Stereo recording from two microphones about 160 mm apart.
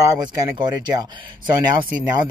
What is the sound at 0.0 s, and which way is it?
Speech, 20° right (ahead or behind).